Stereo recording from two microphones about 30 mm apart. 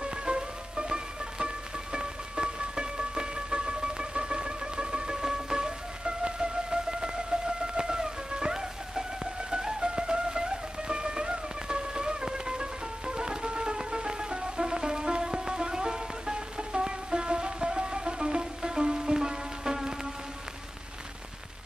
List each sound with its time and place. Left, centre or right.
0.0 s music: right
6.0 s music: right